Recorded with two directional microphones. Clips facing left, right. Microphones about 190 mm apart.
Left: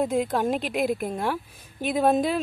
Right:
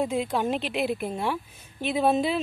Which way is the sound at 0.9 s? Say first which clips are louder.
Left 1 dB; centre (ahead or behind).